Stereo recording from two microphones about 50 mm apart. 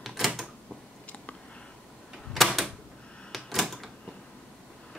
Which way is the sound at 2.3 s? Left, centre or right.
Centre.